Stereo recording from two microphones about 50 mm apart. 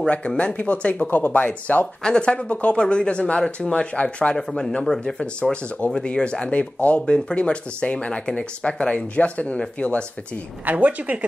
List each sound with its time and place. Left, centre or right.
0.0 s speech: left
2.0 s speech: centre
4.4 s speech: centre
5.2 s speech: left
10.6 s speech: right